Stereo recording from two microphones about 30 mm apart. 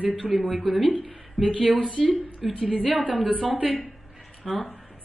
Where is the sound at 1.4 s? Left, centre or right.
Right.